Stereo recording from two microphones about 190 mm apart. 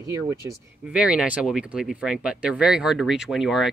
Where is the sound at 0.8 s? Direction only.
5° right (ahead or behind).